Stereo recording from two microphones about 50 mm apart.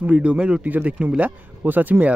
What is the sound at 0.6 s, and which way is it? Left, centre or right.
Speech, right.